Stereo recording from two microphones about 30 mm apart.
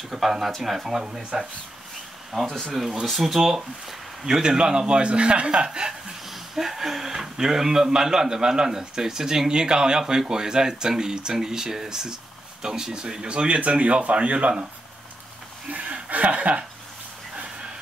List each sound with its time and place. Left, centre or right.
0.1 s speech: centre
0.5 s speech: centre
4.3 s a man's voice: right
5.7 s speech: right
6.2 s speech: centre
9.5 s speech: right
13.3 s a man's voice: right
13.6 s speech: right
15.7 s speech: right